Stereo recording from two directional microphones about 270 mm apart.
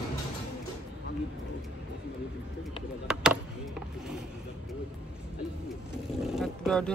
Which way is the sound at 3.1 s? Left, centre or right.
Centre.